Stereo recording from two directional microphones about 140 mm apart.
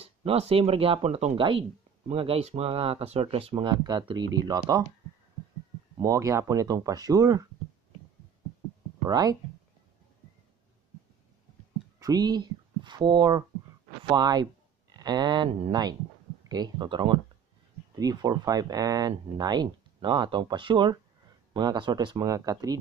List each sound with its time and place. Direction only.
0.0 s speech: 45° right (ahead or behind); by 4.8 s 30° right (ahead or behind)
5.9 s speech: 25° right (ahead or behind)
9.0 s speech: 25° right (ahead or behind)
12.0 s speech: 25° right (ahead or behind)